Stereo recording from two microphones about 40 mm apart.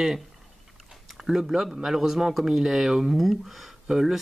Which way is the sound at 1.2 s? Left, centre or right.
Centre.